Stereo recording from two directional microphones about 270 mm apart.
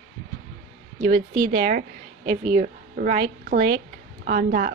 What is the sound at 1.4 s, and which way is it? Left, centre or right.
A woman's voice, right.